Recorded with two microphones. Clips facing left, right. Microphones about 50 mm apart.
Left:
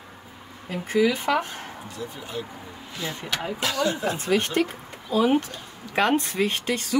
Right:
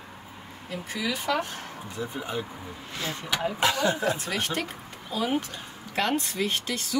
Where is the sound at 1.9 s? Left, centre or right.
Right.